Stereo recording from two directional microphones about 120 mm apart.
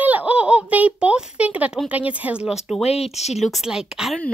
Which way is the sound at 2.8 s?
60° left (ahead or behind).